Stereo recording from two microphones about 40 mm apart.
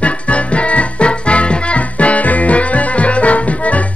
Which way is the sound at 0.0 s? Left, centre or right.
Left.